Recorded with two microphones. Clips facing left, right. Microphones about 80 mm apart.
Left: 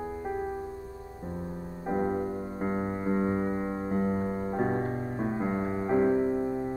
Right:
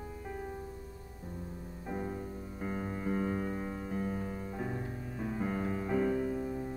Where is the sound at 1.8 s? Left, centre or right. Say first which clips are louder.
Left 10 dB; left.